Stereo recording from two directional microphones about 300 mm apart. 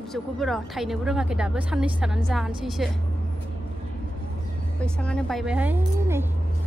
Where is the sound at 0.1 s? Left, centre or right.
Centre.